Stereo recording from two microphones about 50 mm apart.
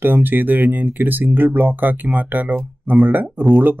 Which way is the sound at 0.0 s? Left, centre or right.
Right.